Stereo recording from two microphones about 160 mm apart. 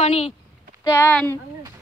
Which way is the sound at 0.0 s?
40° left (ahead or behind).